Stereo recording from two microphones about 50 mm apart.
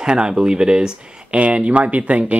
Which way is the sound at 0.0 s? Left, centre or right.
Centre.